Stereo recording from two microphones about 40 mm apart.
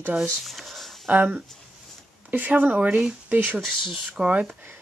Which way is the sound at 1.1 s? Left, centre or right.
Right.